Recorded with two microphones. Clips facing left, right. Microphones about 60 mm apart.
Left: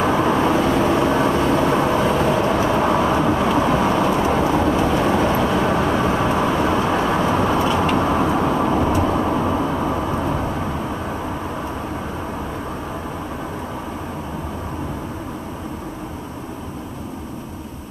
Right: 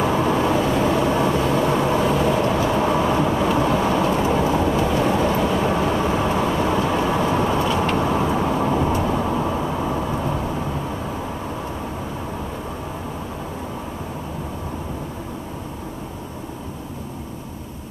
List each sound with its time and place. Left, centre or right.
0.0 s vehicle: left